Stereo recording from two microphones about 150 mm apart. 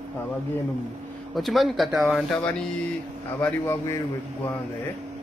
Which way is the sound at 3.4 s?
15° left (ahead or behind).